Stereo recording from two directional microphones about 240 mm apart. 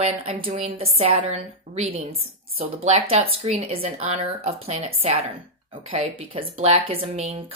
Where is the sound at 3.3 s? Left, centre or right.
Right.